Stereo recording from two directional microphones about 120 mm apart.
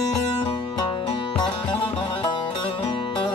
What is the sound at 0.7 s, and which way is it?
Music, 40° left (ahead or behind).